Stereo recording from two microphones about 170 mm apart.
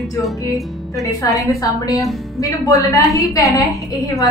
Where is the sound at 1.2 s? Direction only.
20° left (ahead or behind).